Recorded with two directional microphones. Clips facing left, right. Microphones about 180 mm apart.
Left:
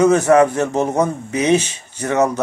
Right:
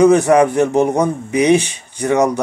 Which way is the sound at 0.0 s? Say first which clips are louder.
Right 2 dB; 15° right (ahead or behind).